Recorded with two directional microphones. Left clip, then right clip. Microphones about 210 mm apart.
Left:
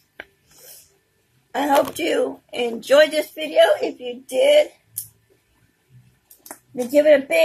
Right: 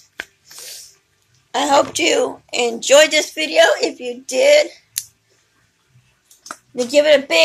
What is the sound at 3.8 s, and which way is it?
Speech, 45° right (ahead or behind).